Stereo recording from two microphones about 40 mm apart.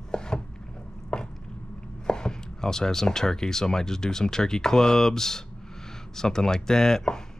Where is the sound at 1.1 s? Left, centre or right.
Centre.